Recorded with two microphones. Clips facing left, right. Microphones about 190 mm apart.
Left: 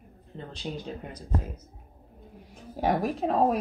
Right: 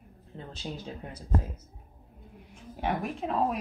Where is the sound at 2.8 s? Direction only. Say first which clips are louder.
Left 5 dB; 40° left (ahead or behind).